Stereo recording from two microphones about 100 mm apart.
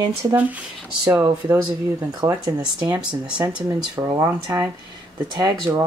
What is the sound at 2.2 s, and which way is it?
Speech, 50° right (ahead or behind).